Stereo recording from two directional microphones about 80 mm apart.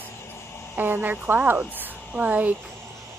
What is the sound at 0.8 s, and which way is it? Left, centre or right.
Speech, right.